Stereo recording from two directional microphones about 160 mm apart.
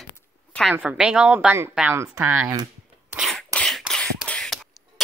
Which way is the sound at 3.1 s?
Centre (ahead or behind).